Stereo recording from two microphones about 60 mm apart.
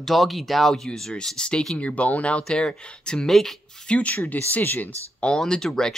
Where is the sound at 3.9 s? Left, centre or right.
Left.